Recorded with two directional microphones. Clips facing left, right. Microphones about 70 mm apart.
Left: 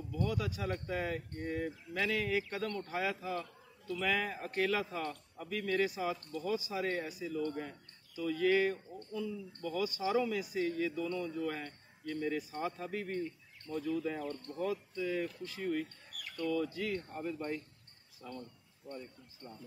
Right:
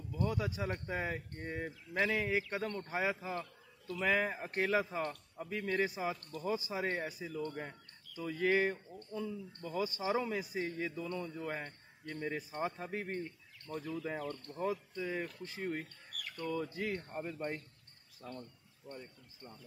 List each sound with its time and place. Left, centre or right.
0.1 s a man's voice: right
16.1 s bird: centre
16.3 s speech: right